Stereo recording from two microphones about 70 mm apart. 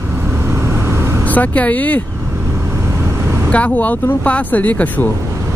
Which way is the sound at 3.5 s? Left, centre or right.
Centre.